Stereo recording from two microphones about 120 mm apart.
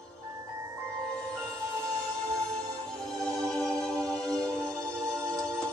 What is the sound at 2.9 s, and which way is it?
Music, 5° left (ahead or behind).